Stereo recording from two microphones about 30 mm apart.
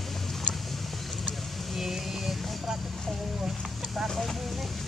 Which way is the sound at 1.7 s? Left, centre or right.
Centre.